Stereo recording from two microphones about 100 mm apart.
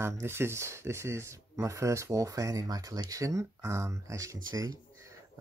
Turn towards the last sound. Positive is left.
turn(degrees=-40)  # may be behind; listen again after turning